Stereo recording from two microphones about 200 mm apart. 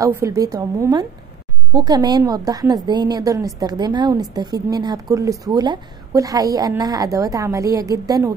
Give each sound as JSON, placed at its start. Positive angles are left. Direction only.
{"t": 0.0, "sound": "a woman's voice", "side_deg": -15}